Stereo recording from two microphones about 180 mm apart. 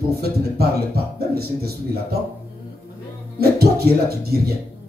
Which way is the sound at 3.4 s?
60° right (ahead or behind).